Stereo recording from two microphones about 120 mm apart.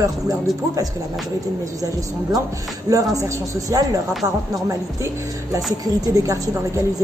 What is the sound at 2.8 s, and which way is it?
A woman's voice, 25° right (ahead or behind).